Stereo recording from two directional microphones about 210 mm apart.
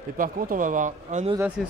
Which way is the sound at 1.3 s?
5° right (ahead or behind).